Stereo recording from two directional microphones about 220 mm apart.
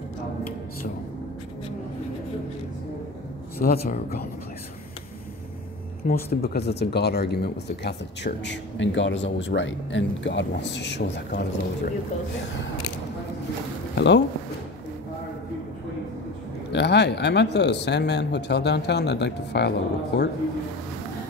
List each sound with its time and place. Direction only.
3.5 s speech: 45° left (ahead or behind)
6.0 s speech: 45° left (ahead or behind)
13.9 s speech: 50° left (ahead or behind)
16.7 s speech: 50° left (ahead or behind)